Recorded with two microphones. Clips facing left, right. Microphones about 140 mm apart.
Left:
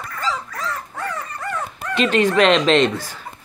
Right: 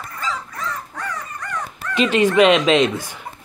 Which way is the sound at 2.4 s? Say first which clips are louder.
Right 1 dB; 5° right (ahead or behind).